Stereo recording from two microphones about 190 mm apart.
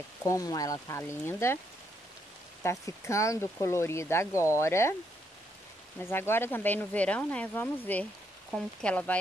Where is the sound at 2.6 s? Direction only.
15° left (ahead or behind).